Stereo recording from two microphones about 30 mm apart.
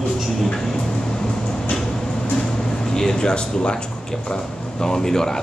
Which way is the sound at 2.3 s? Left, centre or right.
Centre.